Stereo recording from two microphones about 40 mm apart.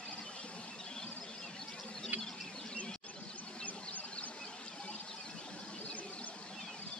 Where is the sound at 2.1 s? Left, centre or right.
Right.